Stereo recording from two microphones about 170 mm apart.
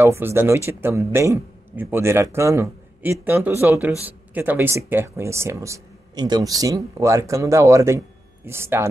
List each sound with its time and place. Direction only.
0.0 s speech: 15° right (ahead or behind)